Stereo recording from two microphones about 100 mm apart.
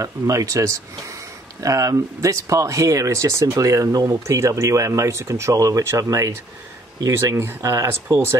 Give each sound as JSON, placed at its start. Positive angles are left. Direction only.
{"t": 0.0, "sound": "speech", "side_deg": -35}